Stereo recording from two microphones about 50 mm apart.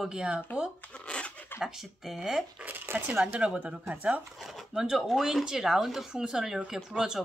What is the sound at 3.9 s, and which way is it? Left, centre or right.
Speech, right.